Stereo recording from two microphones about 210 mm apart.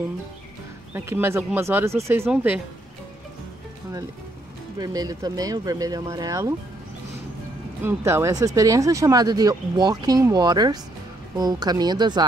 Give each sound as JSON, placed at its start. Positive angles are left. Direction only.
{"t": 0.9, "sound": "speech", "side_deg": -10}
{"t": 4.7, "sound": "speech", "side_deg": -15}
{"t": 7.8, "sound": "speech", "side_deg": -15}